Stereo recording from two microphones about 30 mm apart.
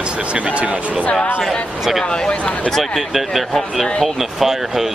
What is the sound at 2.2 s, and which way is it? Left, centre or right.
Speech, left.